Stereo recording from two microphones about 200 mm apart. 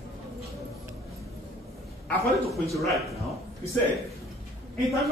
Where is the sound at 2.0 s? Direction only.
Centre (ahead or behind).